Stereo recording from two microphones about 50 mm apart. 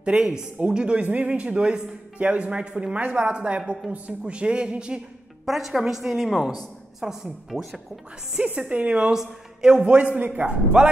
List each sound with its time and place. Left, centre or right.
0.0 s a woman's voice: centre
1.0 s speech: right
1.3 s speech: right
5.4 s a woman's voice: centre
8.5 s speech: right
9.1 s speech: centre
9.8 s speech: right